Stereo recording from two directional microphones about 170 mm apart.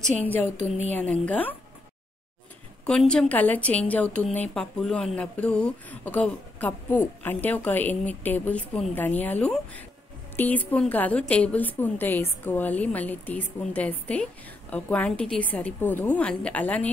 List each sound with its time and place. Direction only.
1.2 s a woman's voice: 10° left (ahead or behind)
2.9 s a woman's voice: 5° left (ahead or behind)